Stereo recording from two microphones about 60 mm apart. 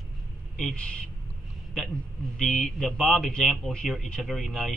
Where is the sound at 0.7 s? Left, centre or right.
Centre.